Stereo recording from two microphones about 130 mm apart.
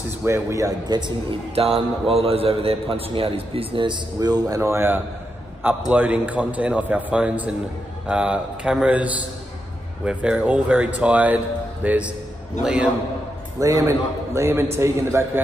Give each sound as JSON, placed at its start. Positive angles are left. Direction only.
{"t": 0.2, "sound": "a man's voice", "side_deg": -20}
{"t": 1.6, "sound": "a man's voice", "side_deg": -45}
{"t": 4.6, "sound": "a man's voice", "side_deg": -20}
{"t": 13.6, "sound": "a man's voice", "side_deg": -25}